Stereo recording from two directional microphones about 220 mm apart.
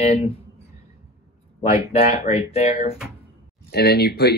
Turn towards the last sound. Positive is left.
turn(degrees=45)  # may be behind; listen again after turning